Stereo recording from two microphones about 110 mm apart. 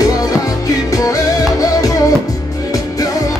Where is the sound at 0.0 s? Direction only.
30° left (ahead or behind).